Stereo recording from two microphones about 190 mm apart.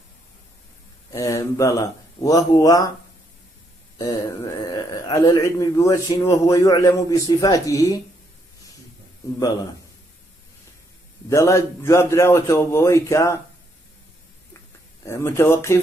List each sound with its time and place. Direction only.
1.1 s a man's voice: 15° left (ahead or behind)
4.0 s a man's voice: 20° left (ahead or behind)
11.2 s a man's voice: 15° left (ahead or behind)
15.0 s a man's voice: 15° left (ahead or behind)